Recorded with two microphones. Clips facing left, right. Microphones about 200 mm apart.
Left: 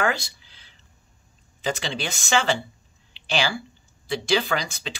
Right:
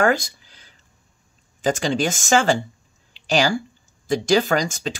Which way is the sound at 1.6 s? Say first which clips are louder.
Right 8 dB; 45° right (ahead or behind).